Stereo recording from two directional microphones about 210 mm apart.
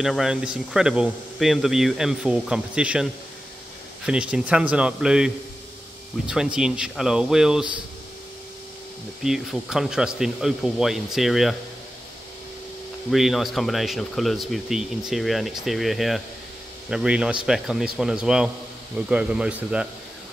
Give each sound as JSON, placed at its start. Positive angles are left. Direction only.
{"t": 0.0, "sound": "speech", "side_deg": 0}
{"t": 9.2, "sound": "speech", "side_deg": 0}
{"t": 13.1, "sound": "speech", "side_deg": 0}